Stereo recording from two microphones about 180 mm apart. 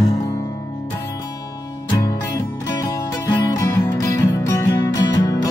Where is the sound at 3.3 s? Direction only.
20° left (ahead or behind).